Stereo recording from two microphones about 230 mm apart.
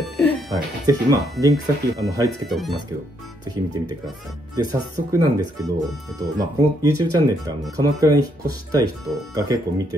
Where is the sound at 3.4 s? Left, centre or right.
Right.